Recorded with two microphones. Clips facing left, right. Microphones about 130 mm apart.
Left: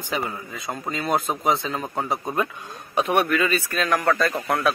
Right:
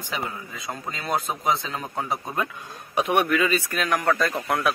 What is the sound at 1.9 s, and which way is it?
Speech, 25° left (ahead or behind).